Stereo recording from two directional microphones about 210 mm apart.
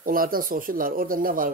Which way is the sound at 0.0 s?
40° right (ahead or behind).